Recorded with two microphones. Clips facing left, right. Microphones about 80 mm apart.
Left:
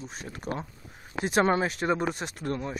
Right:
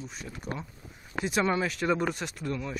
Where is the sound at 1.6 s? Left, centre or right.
Left.